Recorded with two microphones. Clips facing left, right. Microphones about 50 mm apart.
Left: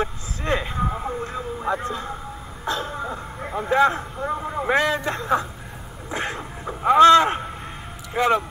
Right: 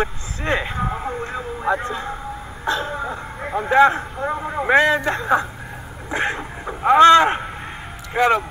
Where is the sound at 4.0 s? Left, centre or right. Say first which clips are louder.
Right 2 dB; right.